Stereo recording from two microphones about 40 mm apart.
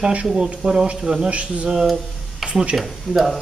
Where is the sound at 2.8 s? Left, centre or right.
Centre.